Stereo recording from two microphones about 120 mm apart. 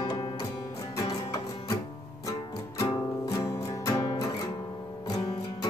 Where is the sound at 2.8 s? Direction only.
30° left (ahead or behind).